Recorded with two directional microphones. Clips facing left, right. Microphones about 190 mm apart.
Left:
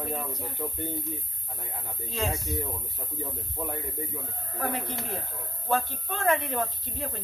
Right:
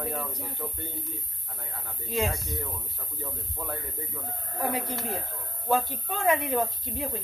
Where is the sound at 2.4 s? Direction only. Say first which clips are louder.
Left 3 dB; 15° left (ahead or behind).